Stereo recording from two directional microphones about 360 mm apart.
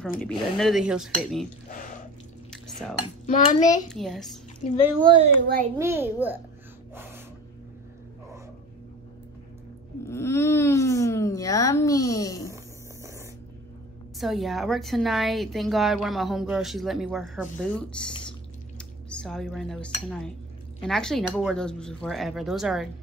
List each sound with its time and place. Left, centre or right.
0.2 s a woman's voice: centre
2.5 s cutlery: centre
3.3 s a child's voice: left
3.9 s a woman's voice: centre
5.0 s a child's voice: centre
5.8 s a woman's voice: centre
10.0 s speech: centre
14.1 s a woman's voice: centre